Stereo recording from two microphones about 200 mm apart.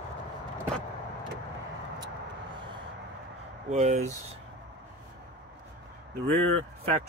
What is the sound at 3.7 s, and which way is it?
Speech, 35° right (ahead or behind).